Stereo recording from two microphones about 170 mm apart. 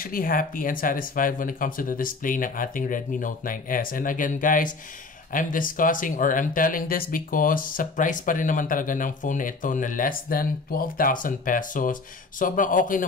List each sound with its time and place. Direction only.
0.0 s speech: 55° left (ahead or behind)